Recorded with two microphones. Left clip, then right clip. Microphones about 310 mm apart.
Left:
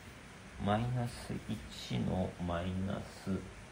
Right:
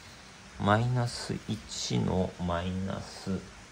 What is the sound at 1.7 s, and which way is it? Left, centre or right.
Speech, right.